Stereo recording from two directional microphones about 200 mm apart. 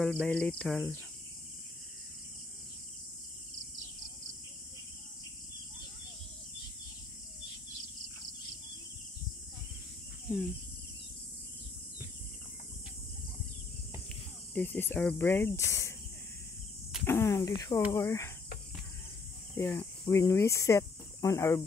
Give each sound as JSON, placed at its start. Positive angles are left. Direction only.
{"t": 0.0, "sound": "speech", "side_deg": 5}
{"t": 14.5, "sound": "cricket", "side_deg": 10}
{"t": 17.0, "sound": "cricket", "side_deg": 10}
{"t": 19.5, "sound": "speech", "side_deg": 5}